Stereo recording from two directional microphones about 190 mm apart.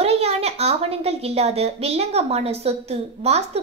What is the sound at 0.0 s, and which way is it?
A woman's voice, 35° right (ahead or behind).